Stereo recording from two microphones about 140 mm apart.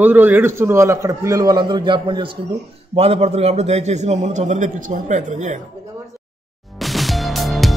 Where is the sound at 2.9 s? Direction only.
50° right (ahead or behind).